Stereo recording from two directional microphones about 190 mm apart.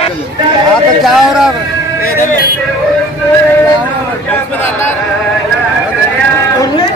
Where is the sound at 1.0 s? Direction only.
Centre (ahead or behind).